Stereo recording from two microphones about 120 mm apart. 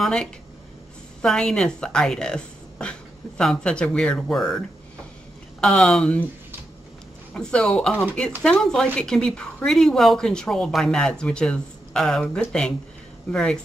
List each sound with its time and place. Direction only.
0.0 s speech: 5° left (ahead or behind)
5.6 s speech: 5° left (ahead or behind)
7.3 s a woman's voice: 5° left (ahead or behind)